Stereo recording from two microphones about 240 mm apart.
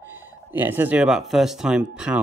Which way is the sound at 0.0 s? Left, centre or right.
Centre.